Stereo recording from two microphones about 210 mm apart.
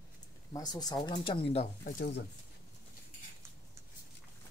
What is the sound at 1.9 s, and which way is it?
Speech, 50° left (ahead or behind).